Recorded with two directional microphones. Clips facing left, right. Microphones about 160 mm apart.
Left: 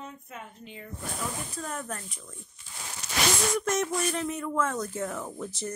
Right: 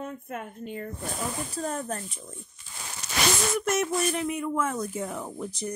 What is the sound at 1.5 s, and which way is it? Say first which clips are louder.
Speech: right 5 dB; 35° right (ahead or behind).